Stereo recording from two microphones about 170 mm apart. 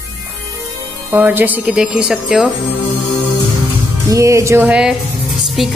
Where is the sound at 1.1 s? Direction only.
10° right (ahead or behind).